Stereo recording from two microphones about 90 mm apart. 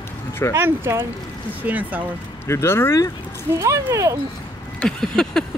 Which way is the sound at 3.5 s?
35° right (ahead or behind).